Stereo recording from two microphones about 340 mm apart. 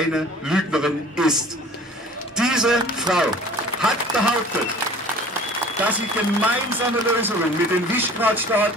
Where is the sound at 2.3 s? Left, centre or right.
Centre.